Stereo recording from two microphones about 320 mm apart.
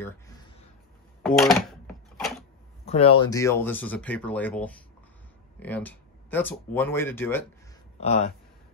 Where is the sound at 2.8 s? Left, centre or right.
Centre.